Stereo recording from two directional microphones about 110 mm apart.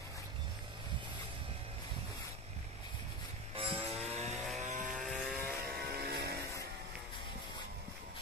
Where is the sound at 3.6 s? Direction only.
60° right (ahead or behind).